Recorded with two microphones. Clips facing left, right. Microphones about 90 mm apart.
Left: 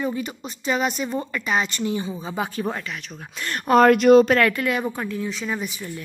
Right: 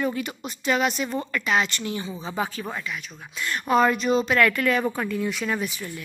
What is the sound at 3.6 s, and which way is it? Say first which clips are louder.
Speech: left 7 dB; 60° left (ahead or behind).